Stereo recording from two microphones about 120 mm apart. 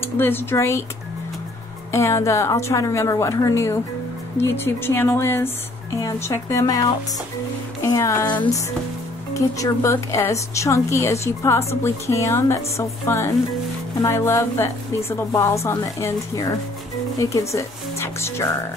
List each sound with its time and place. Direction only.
0.2 s a woman's voice: 20° left (ahead or behind)
1.9 s a woman's voice: 25° left (ahead or behind)
9.3 s a woman's voice: 25° left (ahead or behind)